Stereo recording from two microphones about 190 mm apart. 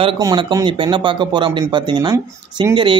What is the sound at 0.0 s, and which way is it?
Speech, 25° right (ahead or behind).